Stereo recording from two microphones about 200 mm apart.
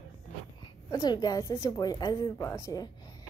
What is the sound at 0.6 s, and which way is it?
A woman's voice, 20° left (ahead or behind).